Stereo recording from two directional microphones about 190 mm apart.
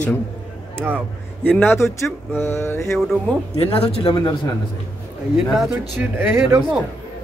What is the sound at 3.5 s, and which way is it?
Speech, 30° left (ahead or behind).